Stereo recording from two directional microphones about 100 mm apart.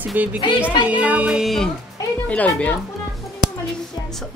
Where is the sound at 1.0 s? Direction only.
10° right (ahead or behind).